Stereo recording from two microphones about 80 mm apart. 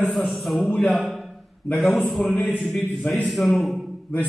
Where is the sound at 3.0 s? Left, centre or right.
Centre.